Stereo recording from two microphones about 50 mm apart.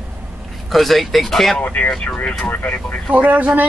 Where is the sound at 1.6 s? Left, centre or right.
Left.